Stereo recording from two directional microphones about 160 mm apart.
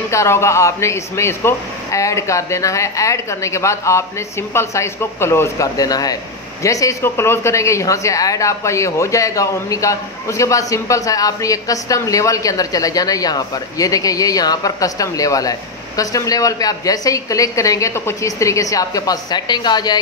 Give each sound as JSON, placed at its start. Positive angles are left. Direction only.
{"t": 0.1, "sound": "speech", "side_deg": 15}